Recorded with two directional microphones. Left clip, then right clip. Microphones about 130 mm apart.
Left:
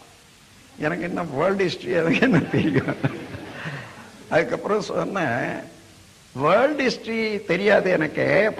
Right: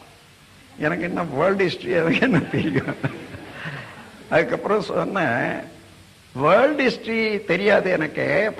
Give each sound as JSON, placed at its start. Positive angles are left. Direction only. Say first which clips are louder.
{"t": 0.7, "sound": "a man's voice", "louder": "right 2 dB", "side_deg": -35}